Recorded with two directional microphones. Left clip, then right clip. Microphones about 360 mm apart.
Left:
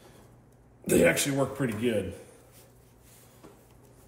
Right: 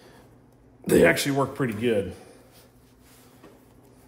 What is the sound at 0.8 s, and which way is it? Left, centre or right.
Speech, right.